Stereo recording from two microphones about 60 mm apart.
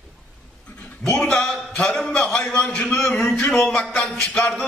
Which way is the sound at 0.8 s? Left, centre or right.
Centre.